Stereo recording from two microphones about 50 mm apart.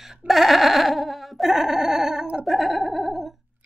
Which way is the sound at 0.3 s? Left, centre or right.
Centre.